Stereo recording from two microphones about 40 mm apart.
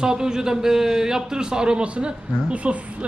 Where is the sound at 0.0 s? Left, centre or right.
Centre.